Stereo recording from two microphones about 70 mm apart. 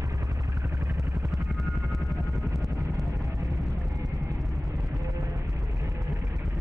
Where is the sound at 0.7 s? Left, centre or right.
Centre.